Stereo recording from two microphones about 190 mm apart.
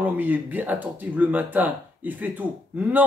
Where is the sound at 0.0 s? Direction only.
10° right (ahead or behind).